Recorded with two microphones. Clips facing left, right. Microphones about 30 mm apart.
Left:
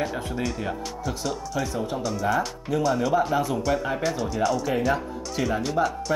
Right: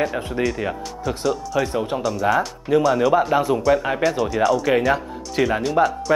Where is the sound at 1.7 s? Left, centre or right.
Right.